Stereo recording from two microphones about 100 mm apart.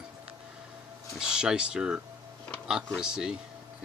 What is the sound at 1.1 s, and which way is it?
Speech, 5° right (ahead or behind).